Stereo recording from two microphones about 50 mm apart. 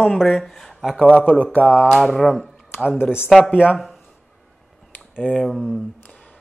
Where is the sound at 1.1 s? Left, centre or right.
Left.